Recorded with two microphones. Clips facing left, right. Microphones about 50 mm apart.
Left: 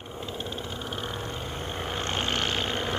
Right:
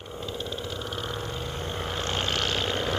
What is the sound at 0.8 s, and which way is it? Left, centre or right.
Vehicle, centre.